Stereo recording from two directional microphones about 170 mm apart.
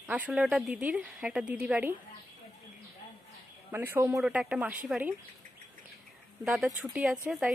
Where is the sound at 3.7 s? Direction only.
10° right (ahead or behind).